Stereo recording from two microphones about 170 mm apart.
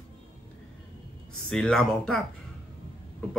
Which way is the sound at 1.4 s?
5° left (ahead or behind).